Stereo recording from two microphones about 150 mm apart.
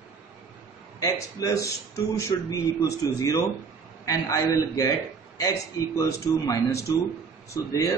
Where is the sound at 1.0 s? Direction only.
20° left (ahead or behind).